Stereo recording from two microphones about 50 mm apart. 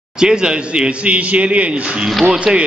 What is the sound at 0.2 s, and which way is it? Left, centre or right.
A man's voice, centre.